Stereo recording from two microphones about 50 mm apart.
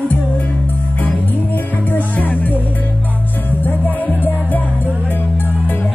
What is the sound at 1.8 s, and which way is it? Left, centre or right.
Music, left.